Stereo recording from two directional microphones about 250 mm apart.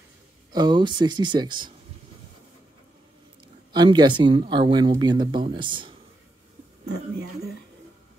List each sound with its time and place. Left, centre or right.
0.5 s speech: centre
3.7 s speech: centre